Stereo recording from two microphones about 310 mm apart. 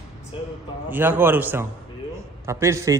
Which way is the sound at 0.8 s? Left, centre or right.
Centre.